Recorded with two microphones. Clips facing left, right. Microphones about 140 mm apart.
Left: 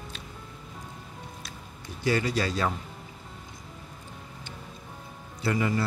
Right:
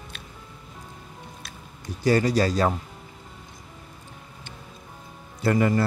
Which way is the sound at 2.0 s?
40° right (ahead or behind).